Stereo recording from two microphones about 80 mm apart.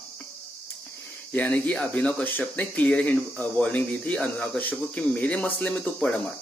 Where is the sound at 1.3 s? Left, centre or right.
Centre.